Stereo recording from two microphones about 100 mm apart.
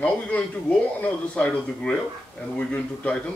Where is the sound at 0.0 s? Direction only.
10° left (ahead or behind).